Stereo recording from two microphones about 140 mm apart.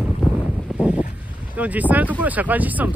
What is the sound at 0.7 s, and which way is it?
Boat, centre (ahead or behind).